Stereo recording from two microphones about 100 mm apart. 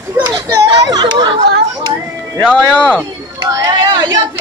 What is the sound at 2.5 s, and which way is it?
Speech, 10° left (ahead or behind).